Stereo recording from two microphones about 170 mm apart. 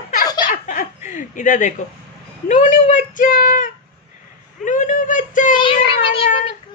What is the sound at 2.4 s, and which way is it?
Speech, 50° left (ahead or behind).